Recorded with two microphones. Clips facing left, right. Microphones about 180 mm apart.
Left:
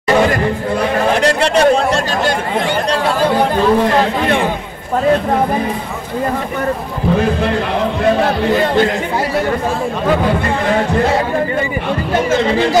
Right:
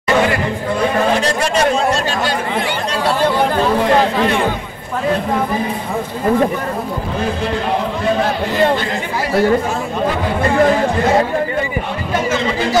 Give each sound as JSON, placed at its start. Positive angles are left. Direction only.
{"t": 1.1, "sound": "chatter", "side_deg": 65}